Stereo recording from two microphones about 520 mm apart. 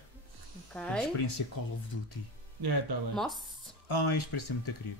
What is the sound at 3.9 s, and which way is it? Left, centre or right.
Speech, left.